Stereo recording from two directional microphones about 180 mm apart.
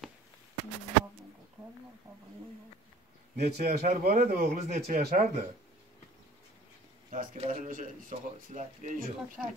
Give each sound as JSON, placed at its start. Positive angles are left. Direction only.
{"t": 3.3, "sound": "a man's voice", "side_deg": -40}
{"t": 4.7, "sound": "speech", "side_deg": -55}
{"t": 7.1, "sound": "speech", "side_deg": -45}
{"t": 9.4, "sound": "speech", "side_deg": -5}